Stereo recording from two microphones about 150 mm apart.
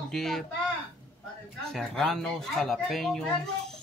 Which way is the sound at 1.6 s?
5° left (ahead or behind).